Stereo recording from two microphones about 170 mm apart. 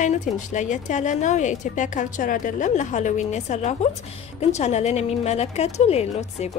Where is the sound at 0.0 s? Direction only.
45° left (ahead or behind).